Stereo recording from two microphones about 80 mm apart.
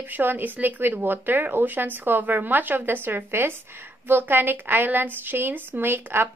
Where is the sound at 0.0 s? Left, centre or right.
Right.